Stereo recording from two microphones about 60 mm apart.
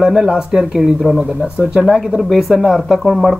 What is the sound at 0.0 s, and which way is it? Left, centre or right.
Speech, centre.